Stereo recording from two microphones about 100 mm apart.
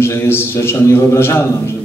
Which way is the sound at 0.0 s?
25° left (ahead or behind).